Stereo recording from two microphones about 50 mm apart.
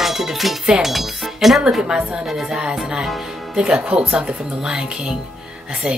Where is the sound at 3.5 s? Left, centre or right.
Centre.